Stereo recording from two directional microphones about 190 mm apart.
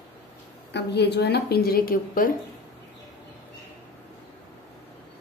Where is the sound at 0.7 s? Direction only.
60° left (ahead or behind).